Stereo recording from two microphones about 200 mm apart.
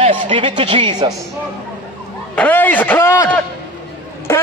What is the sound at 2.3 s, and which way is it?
A man's voice, 10° left (ahead or behind).